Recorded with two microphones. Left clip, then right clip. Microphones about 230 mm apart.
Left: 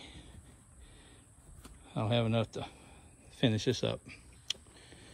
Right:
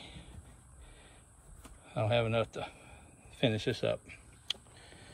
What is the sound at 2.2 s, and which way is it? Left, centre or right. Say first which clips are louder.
Speech: right 2 dB; centre.